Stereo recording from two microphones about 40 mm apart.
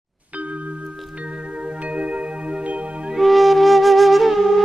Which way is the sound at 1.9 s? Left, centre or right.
Right.